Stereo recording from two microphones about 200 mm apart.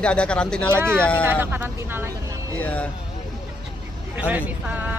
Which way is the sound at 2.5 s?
5° left (ahead or behind).